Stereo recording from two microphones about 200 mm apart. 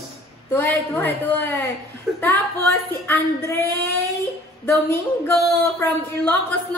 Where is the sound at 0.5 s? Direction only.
10° left (ahead or behind).